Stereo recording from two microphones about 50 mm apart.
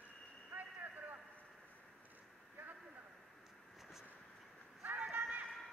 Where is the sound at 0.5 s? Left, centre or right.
Right.